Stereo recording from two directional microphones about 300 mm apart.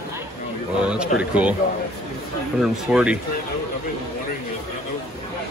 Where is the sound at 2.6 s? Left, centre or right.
Centre.